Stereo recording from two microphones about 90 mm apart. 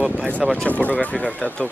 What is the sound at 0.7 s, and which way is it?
Speech, 20° left (ahead or behind).